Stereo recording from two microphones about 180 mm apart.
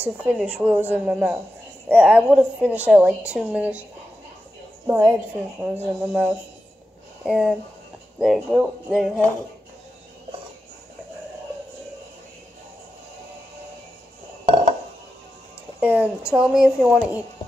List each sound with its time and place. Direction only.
0.0 s a woman's voice: 5° right (ahead or behind)
4.8 s a woman's voice: 15° right (ahead or behind)
7.2 s music: 5° right (ahead or behind)
14.4 s a sound: 35° right (ahead or behind)
15.8 s a woman's voice: 10° right (ahead or behind)